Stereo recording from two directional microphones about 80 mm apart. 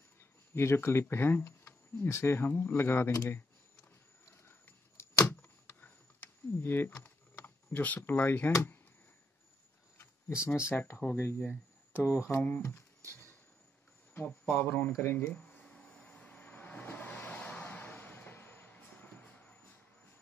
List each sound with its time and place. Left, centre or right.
0.6 s speech: left
4.3 s a sound: left
6.6 s speech: left
9.9 s a sound: left
10.7 s speech: left
14.1 s speech: left
15.3 s vehicle: centre